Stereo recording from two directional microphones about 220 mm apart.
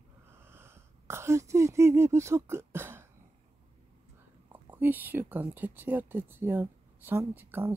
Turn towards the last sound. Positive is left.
turn(degrees=-10)  # may be behind; listen again after turning